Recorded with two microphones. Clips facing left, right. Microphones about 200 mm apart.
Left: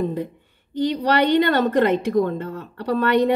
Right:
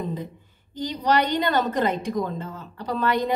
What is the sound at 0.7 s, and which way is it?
A woman's voice, 60° left (ahead or behind).